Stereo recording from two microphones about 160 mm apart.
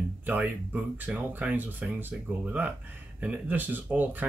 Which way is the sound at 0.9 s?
10° right (ahead or behind).